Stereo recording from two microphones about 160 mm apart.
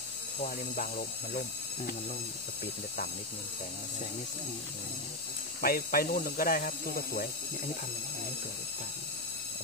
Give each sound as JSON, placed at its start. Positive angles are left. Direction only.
{"t": 0.7, "sound": "speech", "side_deg": 65}
{"t": 5.6, "sound": "speech", "side_deg": 65}